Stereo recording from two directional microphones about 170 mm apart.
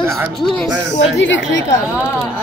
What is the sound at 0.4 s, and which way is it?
Speech, centre (ahead or behind).